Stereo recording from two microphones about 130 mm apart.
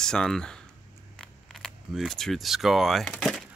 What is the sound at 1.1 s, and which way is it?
Camera, 5° left (ahead or behind).